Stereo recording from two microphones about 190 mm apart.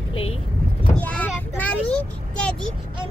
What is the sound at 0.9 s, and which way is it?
A child's voice, 5° left (ahead or behind).